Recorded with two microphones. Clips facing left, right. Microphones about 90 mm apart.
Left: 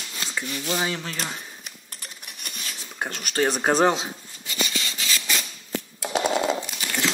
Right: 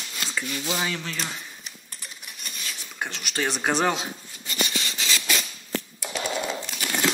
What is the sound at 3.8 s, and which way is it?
Rub, 25° left (ahead or behind).